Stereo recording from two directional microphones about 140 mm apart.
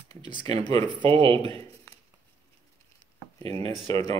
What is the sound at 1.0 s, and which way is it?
Speech, 40° right (ahead or behind).